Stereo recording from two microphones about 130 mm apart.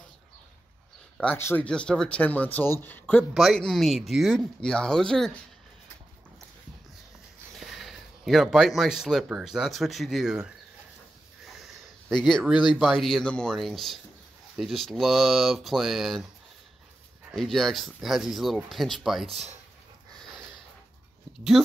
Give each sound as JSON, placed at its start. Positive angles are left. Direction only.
{"t": 1.3, "sound": "a man's voice", "side_deg": 15}
{"t": 7.5, "sound": "speech", "side_deg": 0}
{"t": 11.4, "sound": "sniff", "side_deg": 0}
{"t": 12.3, "sound": "speech", "side_deg": 5}
{"t": 17.3, "sound": "speech", "side_deg": 0}
{"t": 21.6, "sound": "speech", "side_deg": -5}